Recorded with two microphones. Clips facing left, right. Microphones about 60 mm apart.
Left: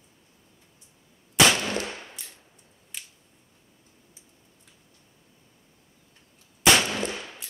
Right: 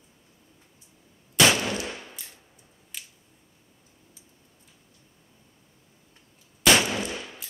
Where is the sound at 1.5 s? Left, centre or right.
Right.